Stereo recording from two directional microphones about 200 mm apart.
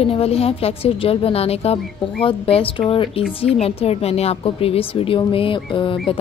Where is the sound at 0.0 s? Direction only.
30° left (ahead or behind).